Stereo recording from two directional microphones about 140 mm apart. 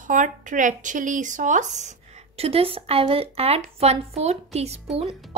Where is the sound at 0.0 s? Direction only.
65° right (ahead or behind).